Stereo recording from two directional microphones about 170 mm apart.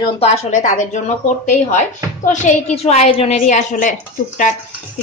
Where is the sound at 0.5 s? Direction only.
50° left (ahead or behind).